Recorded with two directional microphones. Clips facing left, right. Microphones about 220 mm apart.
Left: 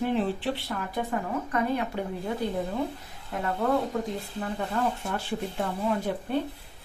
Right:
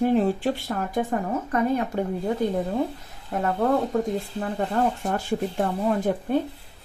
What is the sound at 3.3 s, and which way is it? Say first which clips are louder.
Speech: right 4 dB; 50° right (ahead or behind).